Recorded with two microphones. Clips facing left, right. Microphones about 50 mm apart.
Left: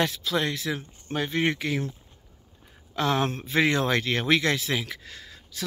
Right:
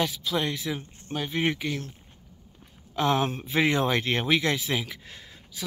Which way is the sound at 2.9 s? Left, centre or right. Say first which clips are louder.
Even; centre.